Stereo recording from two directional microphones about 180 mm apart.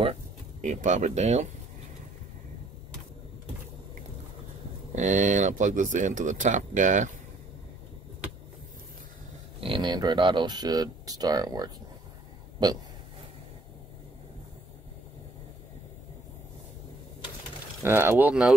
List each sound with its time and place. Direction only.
0.6 s speech: 40° right (ahead or behind)
4.9 s speech: 45° right (ahead or behind)
9.6 s speech: 25° right (ahead or behind)
17.8 s speech: 15° right (ahead or behind)